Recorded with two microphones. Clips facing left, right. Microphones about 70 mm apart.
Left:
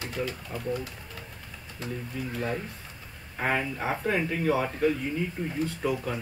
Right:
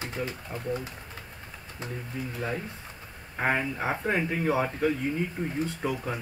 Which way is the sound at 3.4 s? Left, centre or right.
Right.